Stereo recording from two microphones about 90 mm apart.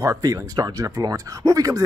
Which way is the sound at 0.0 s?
40° right (ahead or behind).